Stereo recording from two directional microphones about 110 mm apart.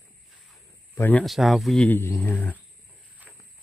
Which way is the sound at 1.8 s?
20° left (ahead or behind).